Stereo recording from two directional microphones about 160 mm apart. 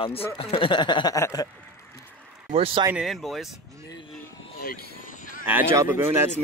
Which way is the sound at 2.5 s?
35° right (ahead or behind).